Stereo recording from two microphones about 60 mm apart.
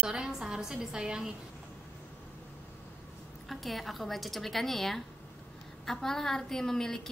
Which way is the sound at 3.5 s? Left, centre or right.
Centre.